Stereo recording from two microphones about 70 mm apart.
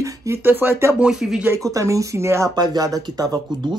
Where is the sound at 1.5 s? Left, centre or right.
Right.